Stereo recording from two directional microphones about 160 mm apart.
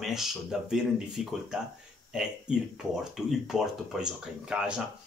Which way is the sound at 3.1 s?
Centre (ahead or behind).